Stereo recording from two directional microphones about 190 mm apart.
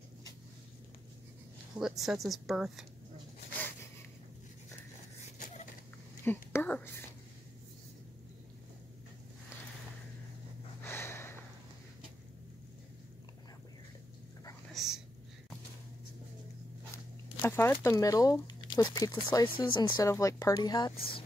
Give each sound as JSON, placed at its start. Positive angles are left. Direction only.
{"t": 1.8, "sound": "a woman's voice", "side_deg": 0}
{"t": 6.2, "sound": "speech", "side_deg": 10}
{"t": 10.8, "sound": "snort", "side_deg": 10}
{"t": 14.7, "sound": "whispering", "side_deg": 0}
{"t": 16.9, "sound": "a sound", "side_deg": 15}
{"t": 19.2, "sound": "speech", "side_deg": 25}